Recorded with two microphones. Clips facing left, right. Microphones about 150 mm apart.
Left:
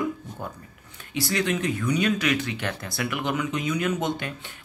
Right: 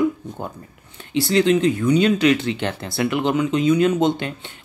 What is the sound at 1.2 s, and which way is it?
Speech, 25° right (ahead or behind).